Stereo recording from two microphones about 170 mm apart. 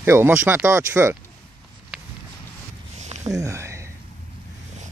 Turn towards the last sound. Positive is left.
turn(degrees=-15)  # may be behind; listen again after turning